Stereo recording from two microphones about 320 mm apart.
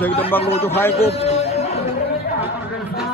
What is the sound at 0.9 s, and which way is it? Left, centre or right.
Speech, centre.